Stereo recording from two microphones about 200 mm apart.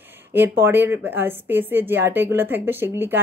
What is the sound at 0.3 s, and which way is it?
Speech, 10° right (ahead or behind).